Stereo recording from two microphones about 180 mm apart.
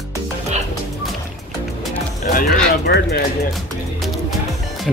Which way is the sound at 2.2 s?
55° left (ahead or behind).